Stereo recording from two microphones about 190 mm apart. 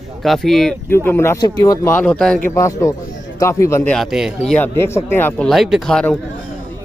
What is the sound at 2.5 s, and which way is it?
Speech, 15° left (ahead or behind).